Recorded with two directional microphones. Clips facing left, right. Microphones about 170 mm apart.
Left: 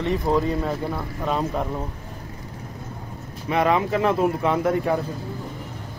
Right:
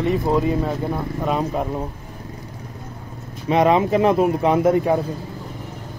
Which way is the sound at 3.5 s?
20° right (ahead or behind).